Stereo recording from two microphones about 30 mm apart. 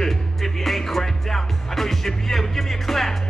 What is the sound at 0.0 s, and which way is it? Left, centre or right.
Music, centre.